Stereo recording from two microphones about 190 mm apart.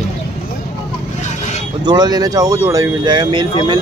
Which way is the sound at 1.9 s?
20° right (ahead or behind).